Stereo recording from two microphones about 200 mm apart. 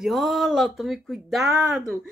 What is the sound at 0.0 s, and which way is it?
Speech, centre (ahead or behind).